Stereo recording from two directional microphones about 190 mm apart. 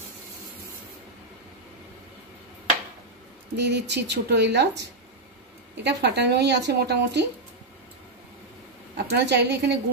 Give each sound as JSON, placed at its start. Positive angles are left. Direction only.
{"t": 3.5, "sound": "speech", "side_deg": -65}
{"t": 9.1, "sound": "speech", "side_deg": -60}